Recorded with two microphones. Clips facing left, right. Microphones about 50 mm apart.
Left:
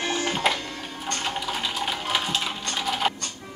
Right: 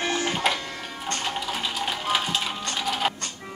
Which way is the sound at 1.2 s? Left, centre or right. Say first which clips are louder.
Left 1 dB; centre.